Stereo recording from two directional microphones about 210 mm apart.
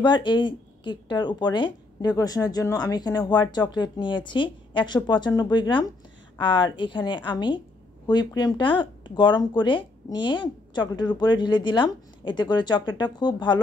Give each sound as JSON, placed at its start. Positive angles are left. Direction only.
{"t": 0.0, "sound": "speech", "side_deg": 20}